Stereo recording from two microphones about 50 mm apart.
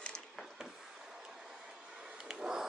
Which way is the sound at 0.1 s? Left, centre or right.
Centre.